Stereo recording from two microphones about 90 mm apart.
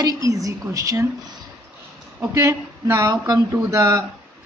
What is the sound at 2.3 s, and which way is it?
A woman's voice, 30° right (ahead or behind).